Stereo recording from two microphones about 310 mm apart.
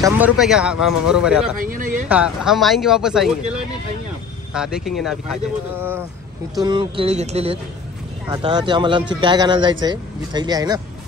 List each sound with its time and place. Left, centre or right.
0.0 s speech: centre
1.6 s speech: right
2.0 s speech: centre
4.6 s speech: centre